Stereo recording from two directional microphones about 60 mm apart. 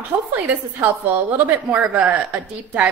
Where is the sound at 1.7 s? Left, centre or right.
Right.